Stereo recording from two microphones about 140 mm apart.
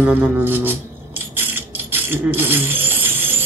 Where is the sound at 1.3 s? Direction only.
15° right (ahead or behind).